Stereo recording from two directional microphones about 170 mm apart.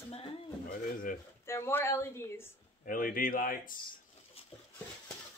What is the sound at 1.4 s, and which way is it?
Speech, 15° left (ahead or behind).